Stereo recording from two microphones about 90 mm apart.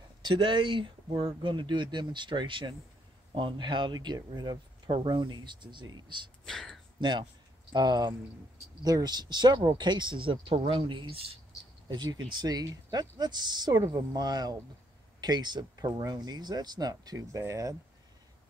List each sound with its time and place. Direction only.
0.2 s speech: 60° right (ahead or behind)
6.4 s speech: 5° left (ahead or behind)
7.0 s speech: 60° right (ahead or behind); by 11.2 s 80° right
11.9 s speech: 55° right (ahead or behind); by 17.7 s 35° right (ahead or behind)